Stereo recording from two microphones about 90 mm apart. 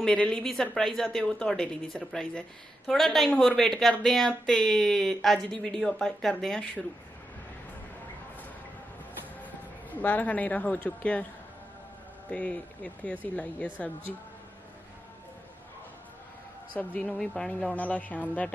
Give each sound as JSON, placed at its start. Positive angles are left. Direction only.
{"t": 0.0, "sound": "speech", "side_deg": 10}
{"t": 9.8, "sound": "speech", "side_deg": 20}
{"t": 12.3, "sound": "speech", "side_deg": 15}
{"t": 16.7, "sound": "speech", "side_deg": 15}